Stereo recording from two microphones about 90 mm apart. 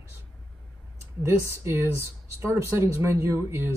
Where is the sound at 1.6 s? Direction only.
30° right (ahead or behind).